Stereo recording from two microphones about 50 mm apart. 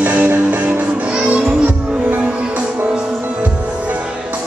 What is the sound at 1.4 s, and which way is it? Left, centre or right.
Music, centre.